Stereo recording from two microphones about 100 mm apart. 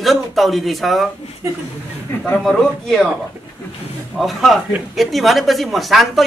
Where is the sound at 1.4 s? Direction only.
25° right (ahead or behind).